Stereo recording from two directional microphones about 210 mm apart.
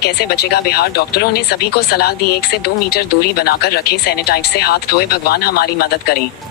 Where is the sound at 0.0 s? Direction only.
50° left (ahead or behind).